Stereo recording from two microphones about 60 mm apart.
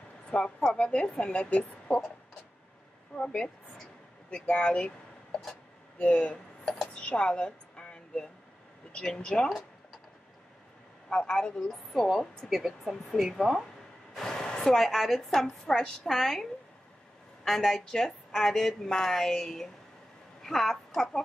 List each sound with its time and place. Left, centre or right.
0.3 s speech: centre
3.2 s speech: centre
5.9 s a sound: centre
9.0 s speech: centre
11.1 s a woman's voice: centre
14.1 s speech: centre
16.2 s a woman's voice: centre
17.5 s a woman's voice: centre